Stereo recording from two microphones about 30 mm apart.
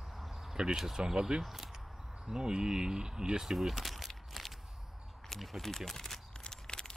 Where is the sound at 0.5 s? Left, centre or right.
Centre.